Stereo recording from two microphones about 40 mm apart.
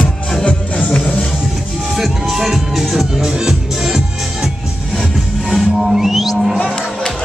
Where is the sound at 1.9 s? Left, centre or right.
Centre.